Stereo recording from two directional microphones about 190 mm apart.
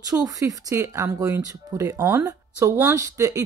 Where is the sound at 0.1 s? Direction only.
20° right (ahead or behind).